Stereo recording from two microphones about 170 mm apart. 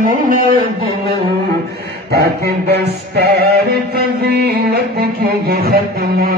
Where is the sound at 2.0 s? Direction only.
70° right (ahead or behind).